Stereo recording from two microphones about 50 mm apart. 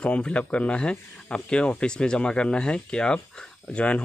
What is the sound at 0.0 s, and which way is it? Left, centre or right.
Speech, left.